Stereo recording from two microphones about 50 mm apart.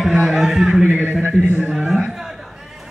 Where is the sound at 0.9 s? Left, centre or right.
Right.